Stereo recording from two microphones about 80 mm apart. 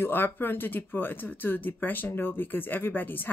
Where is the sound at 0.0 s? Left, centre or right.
Left.